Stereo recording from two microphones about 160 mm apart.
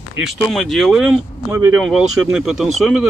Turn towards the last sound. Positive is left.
turn(degrees=0)  # may be behind; listen again after turning